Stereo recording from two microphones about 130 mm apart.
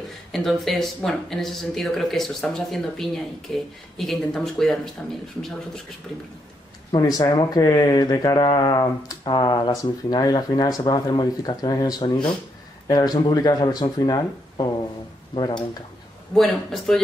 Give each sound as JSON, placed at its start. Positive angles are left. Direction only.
{"t": 0.3, "sound": "speech", "side_deg": 0}
{"t": 7.0, "sound": "speech", "side_deg": 30}
{"t": 16.3, "sound": "speech", "side_deg": 0}